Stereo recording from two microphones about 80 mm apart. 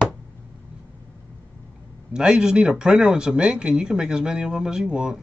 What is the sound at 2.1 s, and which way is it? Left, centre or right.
Speech, centre.